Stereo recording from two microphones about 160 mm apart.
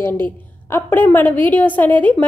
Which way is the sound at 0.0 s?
15° left (ahead or behind).